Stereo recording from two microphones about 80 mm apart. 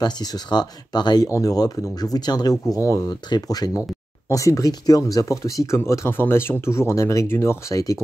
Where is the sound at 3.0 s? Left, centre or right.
Left.